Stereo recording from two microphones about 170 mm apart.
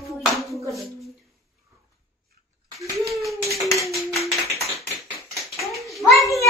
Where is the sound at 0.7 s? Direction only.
Centre (ahead or behind).